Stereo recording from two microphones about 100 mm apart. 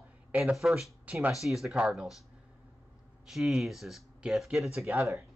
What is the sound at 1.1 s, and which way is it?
Speech, 15° right (ahead or behind).